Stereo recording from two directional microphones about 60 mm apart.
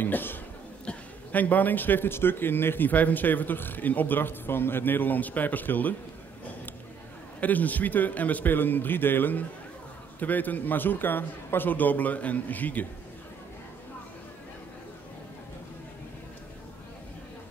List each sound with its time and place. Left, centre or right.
0.0 s a man's voice: left
7.3 s a man's voice: left